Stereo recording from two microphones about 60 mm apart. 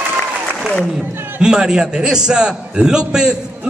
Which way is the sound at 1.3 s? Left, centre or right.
Centre.